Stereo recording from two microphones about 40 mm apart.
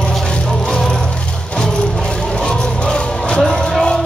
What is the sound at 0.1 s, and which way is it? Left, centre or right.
Music, centre.